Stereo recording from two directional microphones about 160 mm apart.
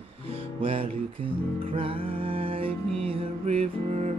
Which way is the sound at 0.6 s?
35° right (ahead or behind).